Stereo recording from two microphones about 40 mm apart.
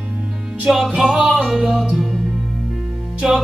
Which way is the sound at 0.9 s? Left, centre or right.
Centre.